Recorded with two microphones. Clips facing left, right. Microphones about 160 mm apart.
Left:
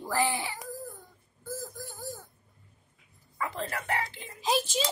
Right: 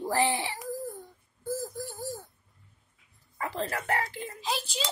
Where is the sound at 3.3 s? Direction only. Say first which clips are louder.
Right 2 dB; 35° right (ahead or behind).